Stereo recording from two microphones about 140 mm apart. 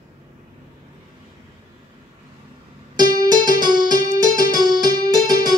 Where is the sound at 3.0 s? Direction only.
30° right (ahead or behind).